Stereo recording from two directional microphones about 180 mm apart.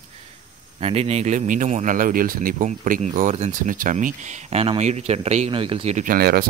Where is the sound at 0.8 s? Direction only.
35° right (ahead or behind).